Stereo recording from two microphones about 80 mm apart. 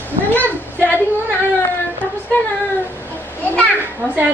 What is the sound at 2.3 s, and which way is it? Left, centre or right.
A woman's voice, left.